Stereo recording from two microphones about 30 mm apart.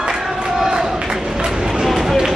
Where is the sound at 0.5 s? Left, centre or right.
Centre.